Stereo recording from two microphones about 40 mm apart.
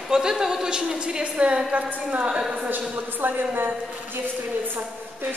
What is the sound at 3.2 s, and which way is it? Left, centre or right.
Speech, right.